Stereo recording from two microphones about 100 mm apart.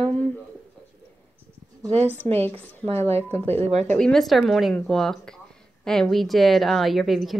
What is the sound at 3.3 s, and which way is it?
Speech, 20° left (ahead or behind).